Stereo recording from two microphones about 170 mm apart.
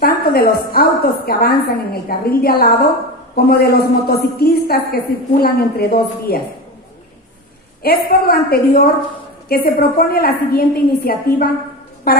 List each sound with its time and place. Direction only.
0.0 s a woman's voice: 65° left (ahead or behind)
7.8 s a woman's voice: 65° left (ahead or behind)